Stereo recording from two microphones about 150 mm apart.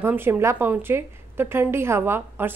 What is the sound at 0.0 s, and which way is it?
A woman's voice, 15° right (ahead or behind).